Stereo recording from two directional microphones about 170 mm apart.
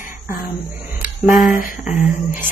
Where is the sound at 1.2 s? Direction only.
55° left (ahead or behind).